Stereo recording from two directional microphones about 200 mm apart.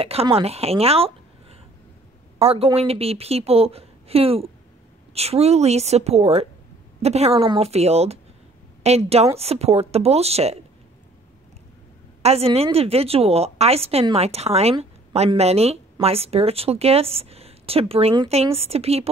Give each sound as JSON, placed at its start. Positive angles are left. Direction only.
{"t": 0.0, "sound": "a woman's voice", "side_deg": -30}
{"t": 2.3, "sound": "a woman's voice", "side_deg": -30}
{"t": 12.2, "sound": "a woman's voice", "side_deg": -30}